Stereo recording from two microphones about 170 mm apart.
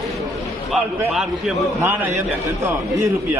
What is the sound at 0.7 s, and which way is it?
Speech, 5° right (ahead or behind).